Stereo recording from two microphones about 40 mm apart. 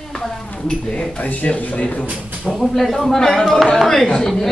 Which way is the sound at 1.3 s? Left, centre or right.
Left.